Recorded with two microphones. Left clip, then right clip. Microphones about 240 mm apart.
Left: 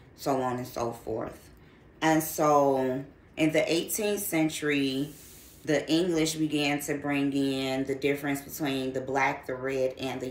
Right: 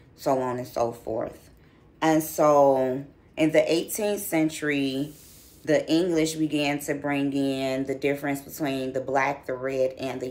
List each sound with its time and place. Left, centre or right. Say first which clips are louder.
0.2 s speech: right 4 dB; centre
7.1 s speech: right 2 dB; right
7.3 s speech: right 3 dB; centre